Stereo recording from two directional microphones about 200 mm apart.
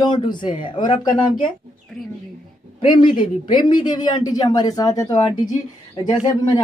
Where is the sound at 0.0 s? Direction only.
25° left (ahead or behind).